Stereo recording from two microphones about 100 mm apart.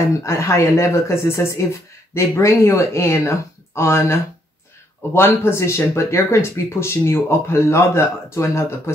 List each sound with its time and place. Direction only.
0.2 s speech: 30° left (ahead or behind)